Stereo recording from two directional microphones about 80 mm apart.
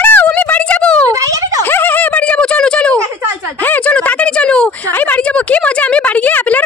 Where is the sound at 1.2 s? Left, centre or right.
Right.